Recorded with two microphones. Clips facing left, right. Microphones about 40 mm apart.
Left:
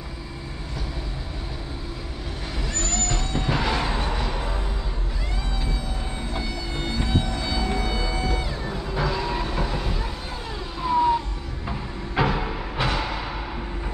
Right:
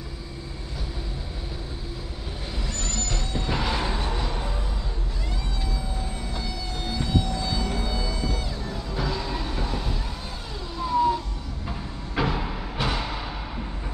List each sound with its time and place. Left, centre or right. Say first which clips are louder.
2.7 s music: left 5 dB; centre
6.3 s a sound: left 3 dB; left
7.6 s music: left 3 dB; left
10.8 s emergency vehicle: left 2 dB; left
12.2 s music: left 3 dB; centre